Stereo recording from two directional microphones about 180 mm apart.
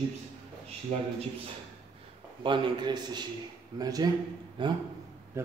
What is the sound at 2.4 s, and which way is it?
A man's voice, 25° right (ahead or behind).